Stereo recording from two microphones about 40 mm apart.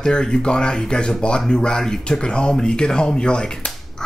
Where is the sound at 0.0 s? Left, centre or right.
Centre.